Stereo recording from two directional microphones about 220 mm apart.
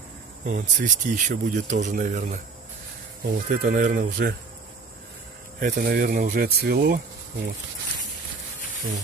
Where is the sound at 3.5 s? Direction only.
45° right (ahead or behind).